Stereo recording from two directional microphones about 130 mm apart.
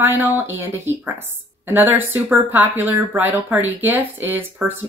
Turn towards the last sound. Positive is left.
turn(degrees=-15)  # may be behind; listen again after turning